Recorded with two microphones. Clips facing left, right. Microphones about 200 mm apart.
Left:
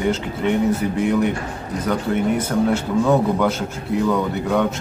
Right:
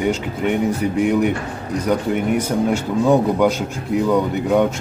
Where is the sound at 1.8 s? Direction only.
15° right (ahead or behind).